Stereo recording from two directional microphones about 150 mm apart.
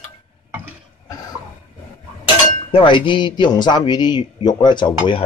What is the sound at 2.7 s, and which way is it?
A man's voice, 35° left (ahead or behind).